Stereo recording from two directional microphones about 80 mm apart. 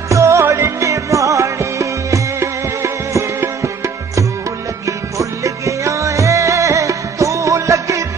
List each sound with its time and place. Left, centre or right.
0.1 s music: right